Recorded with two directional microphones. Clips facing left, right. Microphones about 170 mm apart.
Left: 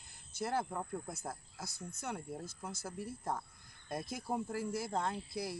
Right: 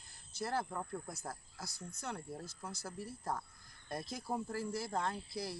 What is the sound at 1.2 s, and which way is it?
Speech, 20° left (ahead or behind).